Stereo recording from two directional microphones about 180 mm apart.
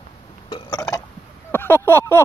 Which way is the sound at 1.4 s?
10° left (ahead or behind).